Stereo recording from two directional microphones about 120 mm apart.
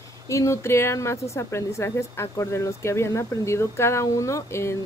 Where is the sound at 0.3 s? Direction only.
25° left (ahead or behind).